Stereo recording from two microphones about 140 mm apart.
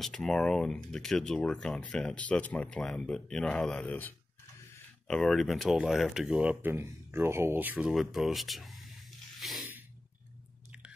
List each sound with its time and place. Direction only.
0.0 s speech: 5° left (ahead or behind)
9.4 s squish: centre (ahead or behind)